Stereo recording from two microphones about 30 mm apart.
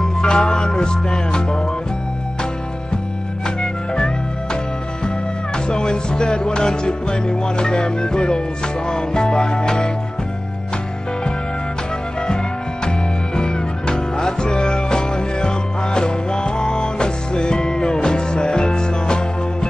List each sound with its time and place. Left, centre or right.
0.0 s music: left
3.4 s music: left
5.7 s music: left
13.4 s music: left